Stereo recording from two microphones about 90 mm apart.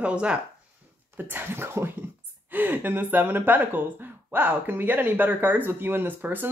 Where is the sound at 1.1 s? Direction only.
25° right (ahead or behind).